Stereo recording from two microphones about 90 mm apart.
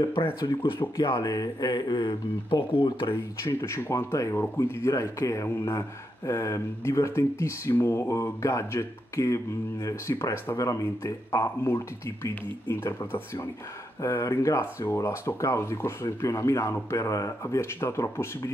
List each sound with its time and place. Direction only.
0.4 s speech: 60° left (ahead or behind)
3.4 s speech: 30° left (ahead or behind)
14.0 s speech: 35° left (ahead or behind)